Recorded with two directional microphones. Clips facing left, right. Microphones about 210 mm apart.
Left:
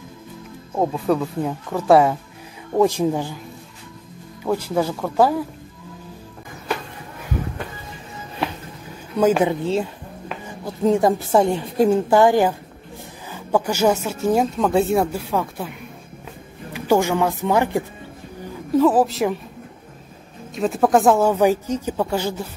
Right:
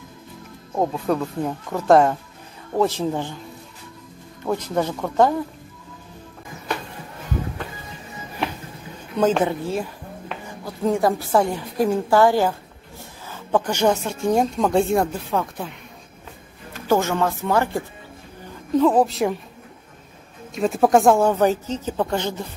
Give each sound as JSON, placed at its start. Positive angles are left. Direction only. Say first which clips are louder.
{"t": 0.7, "sound": "a woman's voice", "louder": "left 2 dB", "side_deg": 5}
{"t": 4.4, "sound": "a woman's voice", "louder": "left 2 dB", "side_deg": 10}
{"t": 9.2, "sound": "a woman's voice", "louder": "left 2 dB", "side_deg": 10}
{"t": 10.6, "sound": "a woman's voice", "louder": "left 3 dB", "side_deg": 20}
{"t": 16.7, "sound": "a woman's voice", "louder": "left 2 dB", "side_deg": 15}
{"t": 18.8, "sound": "speech", "louder": "left 1 dB", "side_deg": 5}
{"t": 20.5, "sound": "a woman's voice", "louder": "even", "side_deg": 0}